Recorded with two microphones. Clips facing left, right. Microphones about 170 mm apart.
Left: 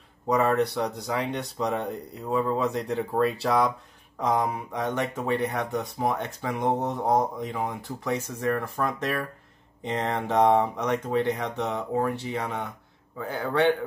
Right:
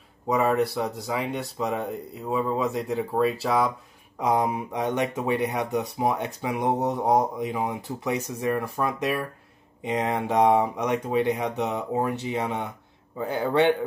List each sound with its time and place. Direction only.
0.3 s speech: 5° right (ahead or behind)
4.2 s speech: 15° right (ahead or behind)